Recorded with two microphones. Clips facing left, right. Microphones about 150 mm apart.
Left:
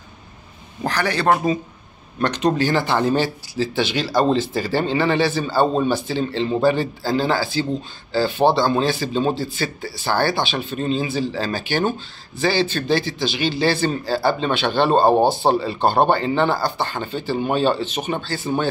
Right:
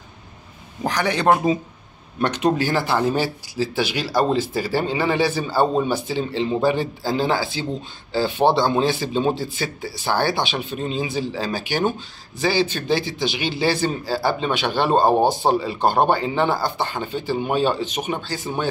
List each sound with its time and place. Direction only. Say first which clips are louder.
0.8 s speech: even; 15° right (ahead or behind)